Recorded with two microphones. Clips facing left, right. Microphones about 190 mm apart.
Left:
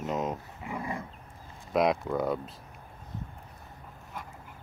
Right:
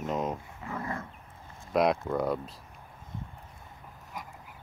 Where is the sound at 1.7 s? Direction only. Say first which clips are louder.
Even; centre (ahead or behind).